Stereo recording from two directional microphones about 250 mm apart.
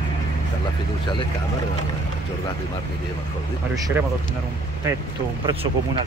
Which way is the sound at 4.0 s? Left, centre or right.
Centre.